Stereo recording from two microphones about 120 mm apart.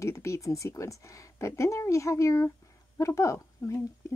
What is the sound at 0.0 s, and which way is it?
Speech, 25° left (ahead or behind).